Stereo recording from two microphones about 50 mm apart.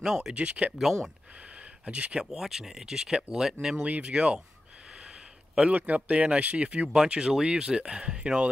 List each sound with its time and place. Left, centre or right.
0.0 s speech: centre
0.3 s speech: right
1.9 s speech: right
2.3 s speech: centre; by 4.4 s right
5.0 s a sound: centre
5.8 s speech: right